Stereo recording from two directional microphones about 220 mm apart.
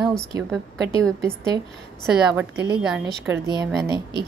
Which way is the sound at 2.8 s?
5° right (ahead or behind).